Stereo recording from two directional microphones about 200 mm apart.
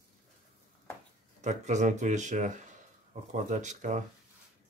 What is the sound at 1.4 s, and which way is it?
Speech, 35° right (ahead or behind).